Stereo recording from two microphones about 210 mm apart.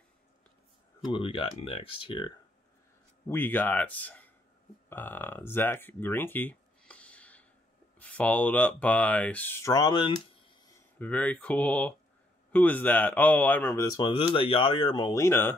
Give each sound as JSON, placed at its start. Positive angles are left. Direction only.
{"t": 1.1, "sound": "speech", "side_deg": 25}
{"t": 3.3, "sound": "speech", "side_deg": 10}
{"t": 11.0, "sound": "speech", "side_deg": 5}